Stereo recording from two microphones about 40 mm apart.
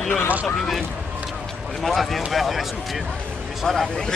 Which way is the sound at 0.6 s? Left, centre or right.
Centre.